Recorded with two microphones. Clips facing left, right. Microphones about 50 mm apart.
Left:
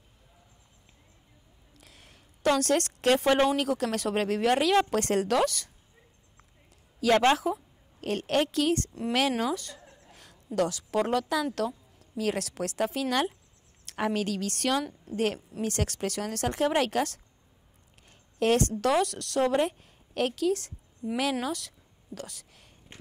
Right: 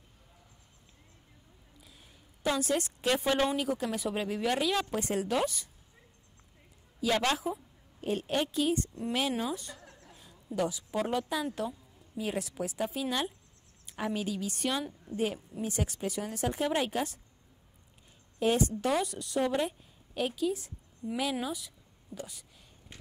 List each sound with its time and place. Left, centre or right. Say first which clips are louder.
1.8 s a sound: left 3 dB; left
3.4 s a woman's voice: left 4 dB; left
7.0 s a woman's voice: left 6 dB; left
8.0 s a woman's voice: left 4 dB; left
9.8 s a sound: even; left
10.5 s a woman's voice: left 4 dB; left
18.4 s a woman's voice: left 3 dB; left
20.2 s a woman's voice: left 4 dB; left
21.1 s a woman's voice: left 4 dB; left